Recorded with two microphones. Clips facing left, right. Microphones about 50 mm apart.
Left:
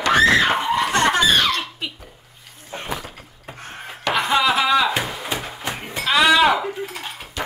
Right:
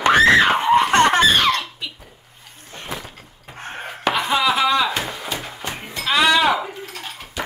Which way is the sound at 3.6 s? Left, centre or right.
Right.